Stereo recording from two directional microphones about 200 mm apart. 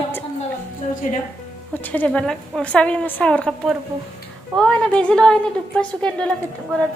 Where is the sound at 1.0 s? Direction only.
40° left (ahead or behind).